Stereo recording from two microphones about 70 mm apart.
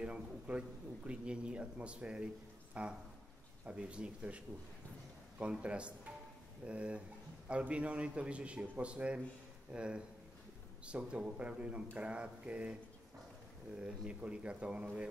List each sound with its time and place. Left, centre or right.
0.0 s speech: centre
5.4 s speech: centre
13.7 s speech: centre